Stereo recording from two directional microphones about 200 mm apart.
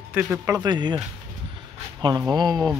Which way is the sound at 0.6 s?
20° right (ahead or behind).